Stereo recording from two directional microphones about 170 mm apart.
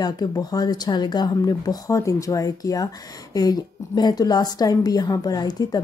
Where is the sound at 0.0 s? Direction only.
25° left (ahead or behind).